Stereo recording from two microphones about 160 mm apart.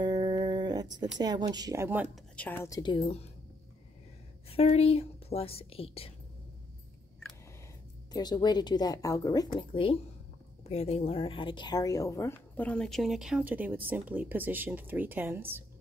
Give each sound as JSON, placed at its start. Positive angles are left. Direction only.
{"t": 0.0, "sound": "a sound", "side_deg": -25}
{"t": 1.1, "sound": "speech", "side_deg": -25}
{"t": 2.1, "sound": "speech", "side_deg": 10}
{"t": 2.8, "sound": "speech", "side_deg": 35}
{"t": 4.5, "sound": "speech", "side_deg": 40}
{"t": 8.1, "sound": "a woman's voice", "side_deg": 25}